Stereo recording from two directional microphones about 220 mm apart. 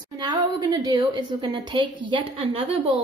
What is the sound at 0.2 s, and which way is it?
A woman's voice, 20° right (ahead or behind).